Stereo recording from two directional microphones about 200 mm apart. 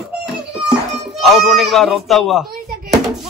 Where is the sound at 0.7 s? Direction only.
Centre (ahead or behind).